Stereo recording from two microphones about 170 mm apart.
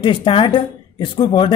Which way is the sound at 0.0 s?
30° left (ahead or behind).